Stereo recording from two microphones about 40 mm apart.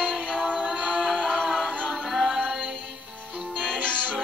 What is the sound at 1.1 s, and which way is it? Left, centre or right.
Music, centre.